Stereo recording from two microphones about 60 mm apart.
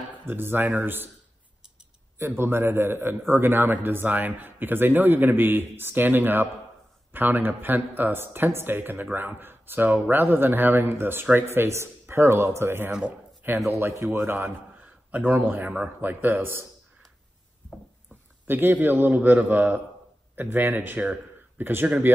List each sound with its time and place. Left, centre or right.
0.3 s a man's voice: right
2.1 s a man's voice: right
14.2 s a man's voice: right
15.0 s a man's voice: right
15.7 s speech: right
16.1 s a man's voice: right
18.5 s a man's voice: right